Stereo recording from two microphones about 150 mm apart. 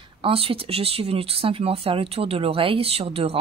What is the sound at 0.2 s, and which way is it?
Speech, 40° right (ahead or behind).